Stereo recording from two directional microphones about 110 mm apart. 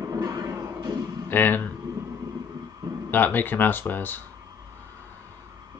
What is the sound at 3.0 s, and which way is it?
Speech, 15° left (ahead or behind).